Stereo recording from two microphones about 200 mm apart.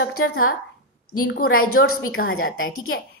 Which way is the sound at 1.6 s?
90° left.